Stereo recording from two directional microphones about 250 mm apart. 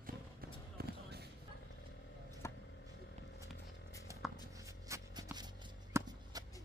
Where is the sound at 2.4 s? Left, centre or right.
Centre.